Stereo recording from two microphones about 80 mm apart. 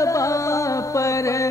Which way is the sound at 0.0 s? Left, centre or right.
Left.